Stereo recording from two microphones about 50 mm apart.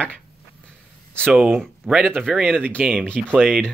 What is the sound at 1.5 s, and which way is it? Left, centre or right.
Speech, right.